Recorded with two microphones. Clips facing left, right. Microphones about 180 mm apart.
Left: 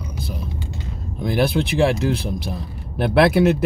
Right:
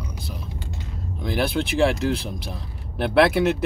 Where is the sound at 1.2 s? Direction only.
40° left (ahead or behind).